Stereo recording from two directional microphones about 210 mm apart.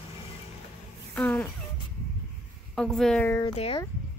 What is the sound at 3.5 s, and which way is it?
Speech, 30° left (ahead or behind).